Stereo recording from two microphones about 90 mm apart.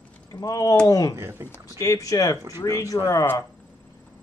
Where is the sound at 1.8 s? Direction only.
35° left (ahead or behind).